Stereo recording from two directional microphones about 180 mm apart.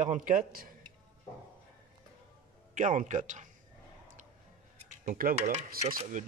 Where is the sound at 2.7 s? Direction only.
45° right (ahead or behind).